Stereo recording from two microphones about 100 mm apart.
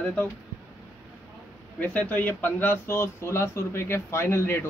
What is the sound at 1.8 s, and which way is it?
Speech, 15° left (ahead or behind).